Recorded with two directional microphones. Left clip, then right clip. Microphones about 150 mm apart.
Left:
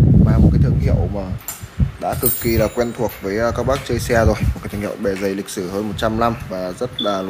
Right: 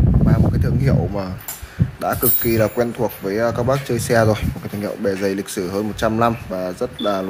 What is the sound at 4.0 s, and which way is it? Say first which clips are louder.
Speech: right 1 dB; 15° right (ahead or behind).